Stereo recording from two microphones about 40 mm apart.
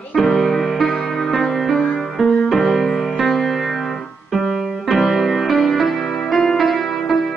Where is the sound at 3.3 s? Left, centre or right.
Centre.